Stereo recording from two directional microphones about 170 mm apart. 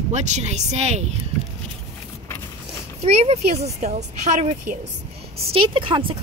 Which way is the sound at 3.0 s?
40° right (ahead or behind).